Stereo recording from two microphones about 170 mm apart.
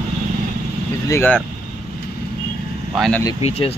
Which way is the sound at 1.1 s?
10° left (ahead or behind).